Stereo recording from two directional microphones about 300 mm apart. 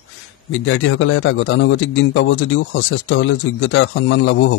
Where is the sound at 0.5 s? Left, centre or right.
Left.